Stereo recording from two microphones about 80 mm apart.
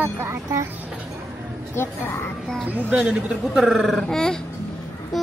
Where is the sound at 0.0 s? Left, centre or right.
Right.